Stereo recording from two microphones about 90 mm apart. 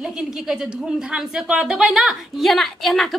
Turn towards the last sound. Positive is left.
turn(degrees=5)  # may be behind; listen again after turning